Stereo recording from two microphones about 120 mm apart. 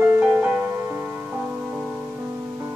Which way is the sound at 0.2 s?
15° right (ahead or behind).